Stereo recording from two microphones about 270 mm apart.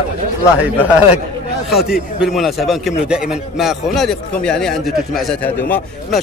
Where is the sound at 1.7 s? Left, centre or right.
Centre.